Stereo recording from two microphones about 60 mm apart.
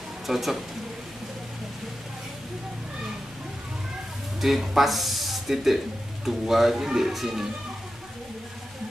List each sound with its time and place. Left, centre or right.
0.3 s speech: centre
4.4 s speech: centre